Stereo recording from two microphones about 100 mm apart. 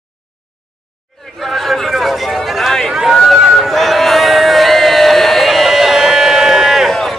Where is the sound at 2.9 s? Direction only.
5° right (ahead or behind).